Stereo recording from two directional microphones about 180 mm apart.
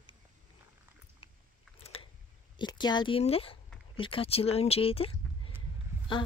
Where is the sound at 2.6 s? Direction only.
25° left (ahead or behind).